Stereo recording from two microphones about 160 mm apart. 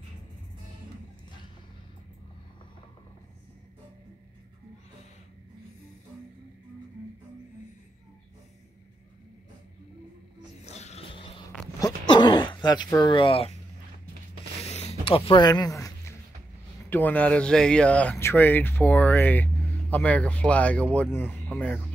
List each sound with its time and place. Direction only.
10.6 s dog: 45° left (ahead or behind)
11.8 s throat clearing: 25° left (ahead or behind)
12.9 s speech: 30° left (ahead or behind)
14.6 s a sound: 40° left (ahead or behind)
15.5 s a sound: 20° left (ahead or behind)
16.9 s speech: 10° left (ahead or behind)